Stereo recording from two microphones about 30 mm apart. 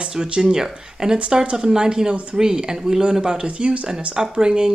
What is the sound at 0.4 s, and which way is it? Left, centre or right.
Speech, right.